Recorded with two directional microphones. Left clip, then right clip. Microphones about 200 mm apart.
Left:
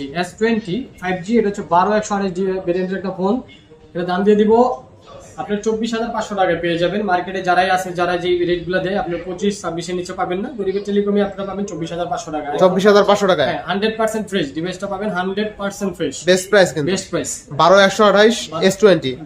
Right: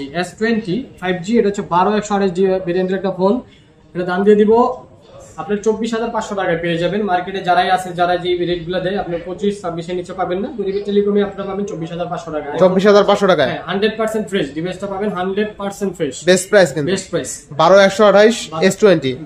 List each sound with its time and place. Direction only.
0.0 s speech: 15° right (ahead or behind)
3.9 s speech: centre (ahead or behind)
13.5 s speech: centre (ahead or behind)
16.3 s speech: 10° right (ahead or behind)
16.8 s speech: 10° left (ahead or behind)
17.6 s speech: 5° right (ahead or behind)